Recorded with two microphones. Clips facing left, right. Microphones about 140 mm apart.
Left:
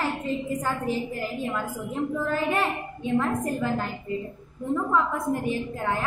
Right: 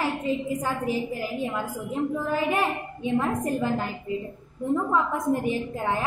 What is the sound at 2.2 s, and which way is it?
A woman's voice, 15° right (ahead or behind).